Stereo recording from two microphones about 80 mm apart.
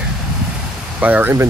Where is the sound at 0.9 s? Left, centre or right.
Right.